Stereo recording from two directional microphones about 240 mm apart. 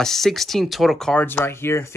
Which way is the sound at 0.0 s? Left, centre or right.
Centre.